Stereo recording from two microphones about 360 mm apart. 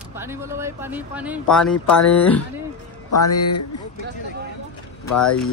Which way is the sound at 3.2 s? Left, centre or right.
Left.